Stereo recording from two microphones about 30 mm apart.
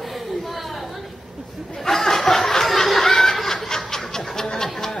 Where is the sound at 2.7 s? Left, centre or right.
Centre.